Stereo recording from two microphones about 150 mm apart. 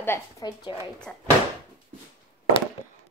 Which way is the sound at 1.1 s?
Centre (ahead or behind).